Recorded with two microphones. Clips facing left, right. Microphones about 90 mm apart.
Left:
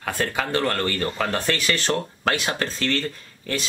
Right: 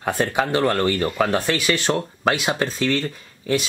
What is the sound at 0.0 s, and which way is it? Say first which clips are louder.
Speech: right 4 dB; 20° right (ahead or behind).